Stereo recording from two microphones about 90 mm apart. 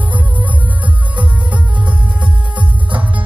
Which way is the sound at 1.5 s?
15° right (ahead or behind).